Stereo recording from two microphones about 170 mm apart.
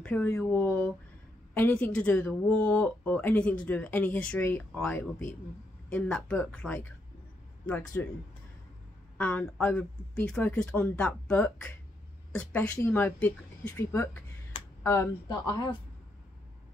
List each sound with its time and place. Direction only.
0.0 s speech: 10° left (ahead or behind)
9.2 s speech: 10° left (ahead or behind)